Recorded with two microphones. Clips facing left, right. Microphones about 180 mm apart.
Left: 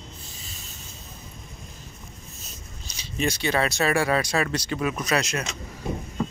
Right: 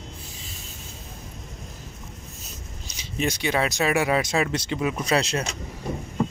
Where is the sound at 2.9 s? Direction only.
15° right (ahead or behind).